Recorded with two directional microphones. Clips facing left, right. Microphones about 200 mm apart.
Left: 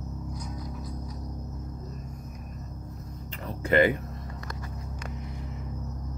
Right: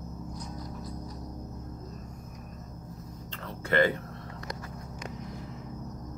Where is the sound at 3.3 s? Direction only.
15° left (ahead or behind).